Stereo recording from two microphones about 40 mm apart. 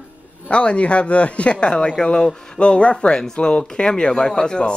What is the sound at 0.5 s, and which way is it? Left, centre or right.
A man's voice, left.